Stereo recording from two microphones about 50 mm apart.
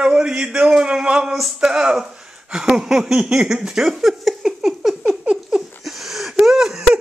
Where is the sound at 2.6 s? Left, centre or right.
Centre.